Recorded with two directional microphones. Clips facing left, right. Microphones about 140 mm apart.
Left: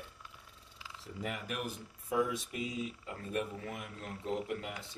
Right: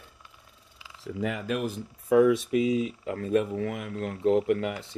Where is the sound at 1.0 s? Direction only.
90° right.